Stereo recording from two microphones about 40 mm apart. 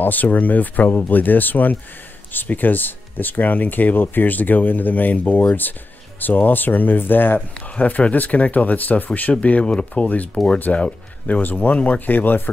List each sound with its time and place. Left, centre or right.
0.0 s speech: left
7.7 s speech: left
10.3 s speech: left
11.2 s speech: left